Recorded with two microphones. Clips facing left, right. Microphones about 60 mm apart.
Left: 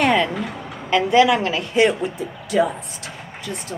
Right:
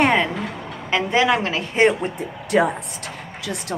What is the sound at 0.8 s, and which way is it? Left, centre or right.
A woman's voice, right.